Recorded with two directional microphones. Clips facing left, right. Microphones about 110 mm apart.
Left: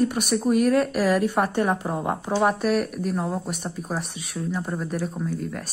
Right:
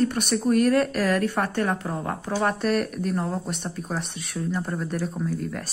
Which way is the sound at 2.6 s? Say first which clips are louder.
Left 1 dB; centre (ahead or behind).